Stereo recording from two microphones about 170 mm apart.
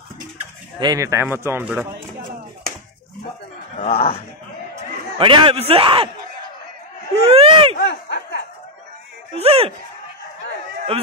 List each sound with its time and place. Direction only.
0.7 s speech: 20° right (ahead or behind)
3.8 s speech: 40° left (ahead or behind)
5.2 s a man's voice: 30° right (ahead or behind)
7.2 s speech: 35° right (ahead or behind)
7.7 s a sound: 75° left (ahead or behind)
9.3 s a man's voice: 35° right (ahead or behind)